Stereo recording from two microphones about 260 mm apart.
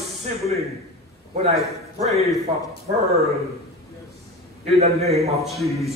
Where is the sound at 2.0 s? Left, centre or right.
Right.